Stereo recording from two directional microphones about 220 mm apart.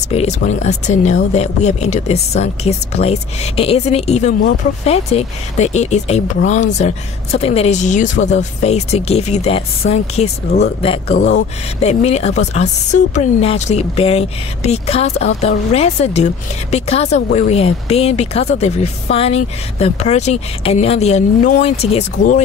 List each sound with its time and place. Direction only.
0.1 s speech: 30° left (ahead or behind)